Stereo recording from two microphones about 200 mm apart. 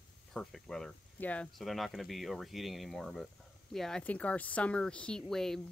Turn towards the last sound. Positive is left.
turn(degrees=0)  # may be behind; listen again after turning